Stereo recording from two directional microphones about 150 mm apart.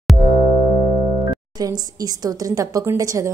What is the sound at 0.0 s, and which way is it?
Music, centre (ahead or behind).